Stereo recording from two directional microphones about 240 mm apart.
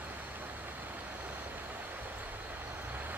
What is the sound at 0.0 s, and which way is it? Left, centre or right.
Vehicle, centre.